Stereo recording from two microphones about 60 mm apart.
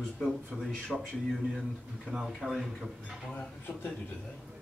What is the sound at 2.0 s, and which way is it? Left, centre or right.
Speech, centre.